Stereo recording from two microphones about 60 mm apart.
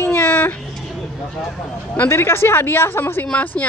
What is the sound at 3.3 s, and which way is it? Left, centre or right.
Speech, left.